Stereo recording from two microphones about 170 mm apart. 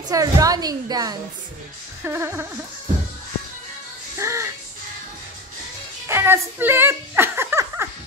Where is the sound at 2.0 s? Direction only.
15° right (ahead or behind).